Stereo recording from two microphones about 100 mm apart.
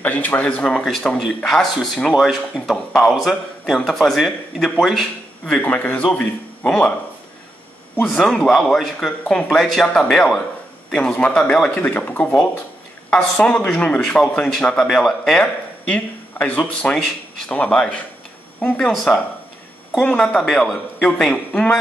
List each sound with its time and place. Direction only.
0.0 s speech: 15° left (ahead or behind)
5.6 s speech: 15° left (ahead or behind)
8.2 s speech: 5° left (ahead or behind)
15.9 s speech: 15° left (ahead or behind)
18.9 s speech: centre (ahead or behind)